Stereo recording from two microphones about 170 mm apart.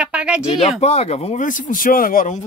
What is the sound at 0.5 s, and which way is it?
Speech, 35° left (ahead or behind).